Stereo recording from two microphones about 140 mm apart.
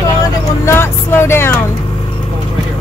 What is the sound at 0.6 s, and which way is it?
Speech, 15° left (ahead or behind).